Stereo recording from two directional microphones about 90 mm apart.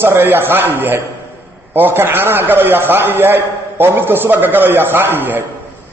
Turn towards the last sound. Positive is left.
turn(degrees=-20)  # may be behind; listen again after turning